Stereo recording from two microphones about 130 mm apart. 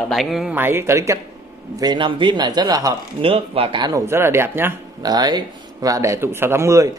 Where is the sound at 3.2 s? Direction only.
45° right (ahead or behind).